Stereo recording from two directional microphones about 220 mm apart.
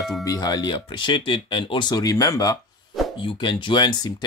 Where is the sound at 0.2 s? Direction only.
15° left (ahead or behind).